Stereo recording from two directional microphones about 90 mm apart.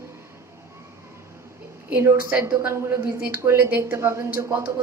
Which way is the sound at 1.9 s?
25° right (ahead or behind).